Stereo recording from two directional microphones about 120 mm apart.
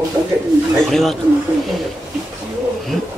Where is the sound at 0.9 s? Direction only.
Centre (ahead or behind).